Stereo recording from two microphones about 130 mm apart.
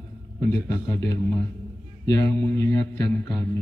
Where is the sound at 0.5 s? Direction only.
25° left (ahead or behind).